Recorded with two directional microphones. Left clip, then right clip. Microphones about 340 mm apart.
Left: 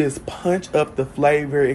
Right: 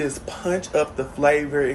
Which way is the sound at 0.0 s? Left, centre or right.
Left.